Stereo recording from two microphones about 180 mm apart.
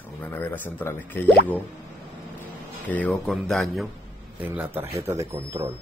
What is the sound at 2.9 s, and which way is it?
Speech, 5° left (ahead or behind).